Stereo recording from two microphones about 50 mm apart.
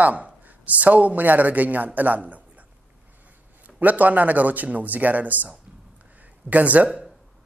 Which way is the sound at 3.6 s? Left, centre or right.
Right.